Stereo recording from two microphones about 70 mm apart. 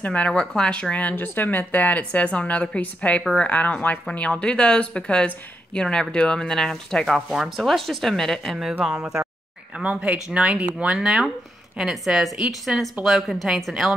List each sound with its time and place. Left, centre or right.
0.0 s speech: centre
7.2 s speech: centre
9.8 s speech: centre